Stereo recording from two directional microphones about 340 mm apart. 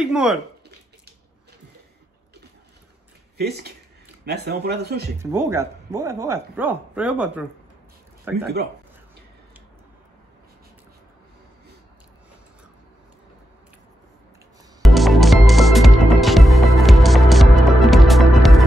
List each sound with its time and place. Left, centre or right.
0.0 s speech: centre
4.3 s speech: right
5.2 s speech: centre
14.8 s music: centre